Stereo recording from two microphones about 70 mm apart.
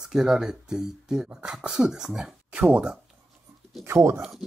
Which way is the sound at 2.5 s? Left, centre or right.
Right.